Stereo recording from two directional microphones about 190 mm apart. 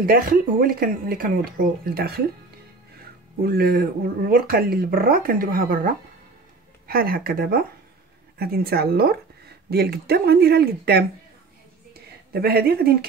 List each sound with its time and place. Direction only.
0.0 s speech: 50° right (ahead or behind)
12.3 s speech: 55° right (ahead or behind)